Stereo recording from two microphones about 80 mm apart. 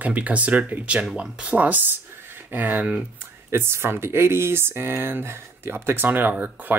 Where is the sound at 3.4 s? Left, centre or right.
Right.